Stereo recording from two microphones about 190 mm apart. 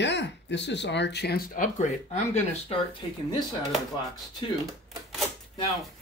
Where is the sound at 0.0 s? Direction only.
65° left (ahead or behind); by 1.9 s 45° left (ahead or behind).